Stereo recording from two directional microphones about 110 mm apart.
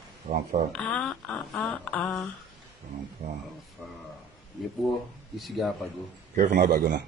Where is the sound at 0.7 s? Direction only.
5° left (ahead or behind).